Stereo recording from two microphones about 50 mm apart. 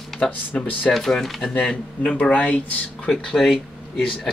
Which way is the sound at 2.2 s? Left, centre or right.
Left.